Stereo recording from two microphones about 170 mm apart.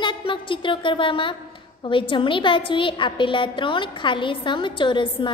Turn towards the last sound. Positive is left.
turn(degrees=30)  # may be behind; listen again after turning